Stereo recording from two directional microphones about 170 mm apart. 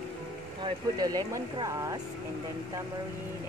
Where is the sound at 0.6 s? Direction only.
25° right (ahead or behind).